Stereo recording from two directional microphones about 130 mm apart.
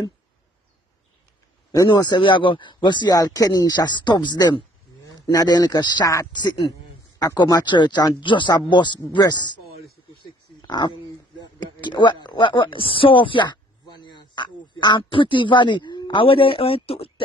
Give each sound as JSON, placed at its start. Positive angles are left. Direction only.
{"t": 1.7, "sound": "speech", "side_deg": 30}
{"t": 10.1, "sound": "pig", "side_deg": 35}
{"t": 11.4, "sound": "speech", "side_deg": 35}